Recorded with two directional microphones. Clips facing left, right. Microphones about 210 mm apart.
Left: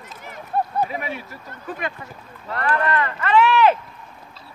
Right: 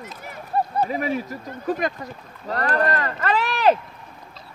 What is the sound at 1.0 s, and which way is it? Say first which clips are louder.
Speech: right 6 dB; 40° right (ahead or behind).